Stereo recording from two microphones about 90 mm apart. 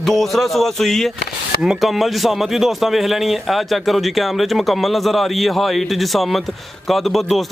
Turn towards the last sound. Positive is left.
turn(degrees=0)  # may be behind; listen again after turning